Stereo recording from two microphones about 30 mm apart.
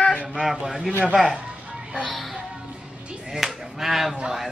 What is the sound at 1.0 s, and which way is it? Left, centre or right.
Speech, right.